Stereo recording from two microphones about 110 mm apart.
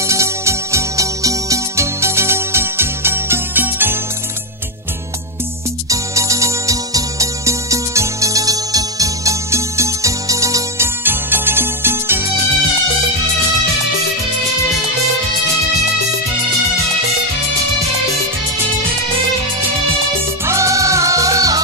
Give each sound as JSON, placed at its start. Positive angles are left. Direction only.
{"t": 0.0, "sound": "music", "side_deg": -25}
{"t": 5.9, "sound": "music", "side_deg": -30}
{"t": 20.4, "sound": "music", "side_deg": -30}